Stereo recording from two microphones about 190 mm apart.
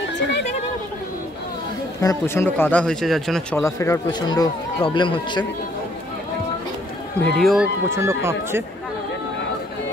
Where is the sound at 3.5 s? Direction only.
15° left (ahead or behind).